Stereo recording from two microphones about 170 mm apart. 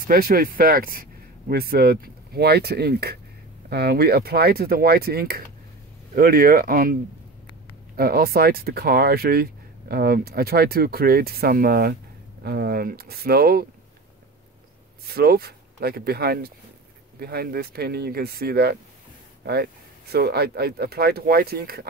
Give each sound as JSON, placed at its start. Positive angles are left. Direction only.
{"t": 0.0, "sound": "speech", "side_deg": -55}
{"t": 15.0, "sound": "speech", "side_deg": -65}